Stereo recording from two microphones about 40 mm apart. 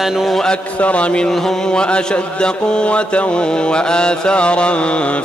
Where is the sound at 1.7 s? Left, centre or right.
Left.